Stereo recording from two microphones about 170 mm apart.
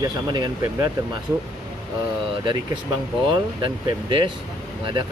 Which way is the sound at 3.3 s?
30° right (ahead or behind).